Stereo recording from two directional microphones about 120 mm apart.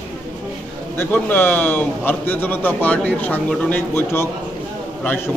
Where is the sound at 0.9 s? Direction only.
15° left (ahead or behind).